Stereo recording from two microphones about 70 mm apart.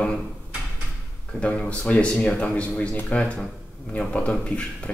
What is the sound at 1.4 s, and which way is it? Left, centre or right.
Speech, centre.